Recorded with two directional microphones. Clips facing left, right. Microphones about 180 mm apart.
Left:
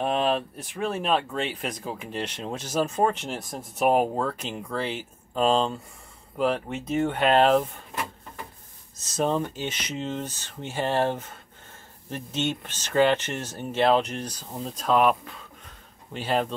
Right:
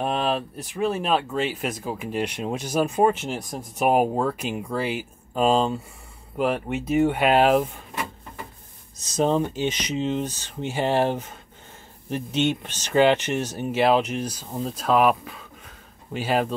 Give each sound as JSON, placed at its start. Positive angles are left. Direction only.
{"t": 0.0, "sound": "speech", "side_deg": 0}
{"t": 8.9, "sound": "speech", "side_deg": -15}